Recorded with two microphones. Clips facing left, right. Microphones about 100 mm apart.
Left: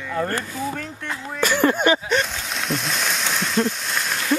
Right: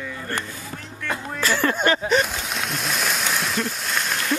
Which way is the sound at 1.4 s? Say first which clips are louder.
Left 4 dB; 15° left (ahead or behind).